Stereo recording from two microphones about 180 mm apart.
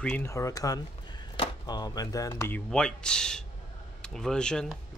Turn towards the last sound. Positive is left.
turn(degrees=5)  # may be behind; listen again after turning